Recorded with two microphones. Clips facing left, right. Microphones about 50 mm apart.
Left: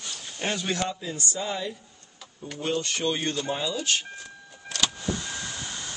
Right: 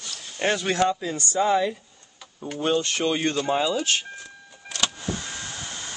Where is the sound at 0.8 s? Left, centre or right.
Right.